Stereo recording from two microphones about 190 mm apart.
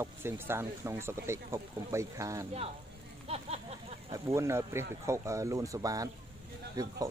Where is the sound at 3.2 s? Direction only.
35° right (ahead or behind).